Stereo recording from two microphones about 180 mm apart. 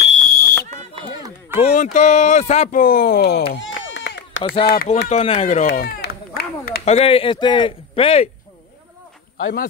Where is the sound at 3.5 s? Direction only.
90° left.